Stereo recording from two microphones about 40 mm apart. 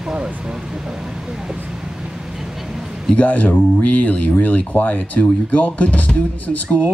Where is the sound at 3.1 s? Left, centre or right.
Left.